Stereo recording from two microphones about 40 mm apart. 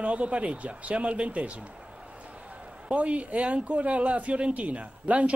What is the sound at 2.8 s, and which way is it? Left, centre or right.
Speech, right.